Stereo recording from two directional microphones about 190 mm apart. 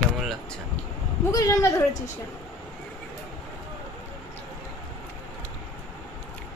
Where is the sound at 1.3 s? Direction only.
20° left (ahead or behind).